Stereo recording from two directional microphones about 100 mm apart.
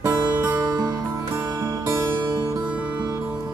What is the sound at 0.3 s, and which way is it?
Music, 15° right (ahead or behind).